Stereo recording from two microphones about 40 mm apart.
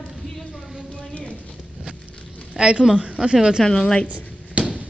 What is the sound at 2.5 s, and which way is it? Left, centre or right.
Speech, right.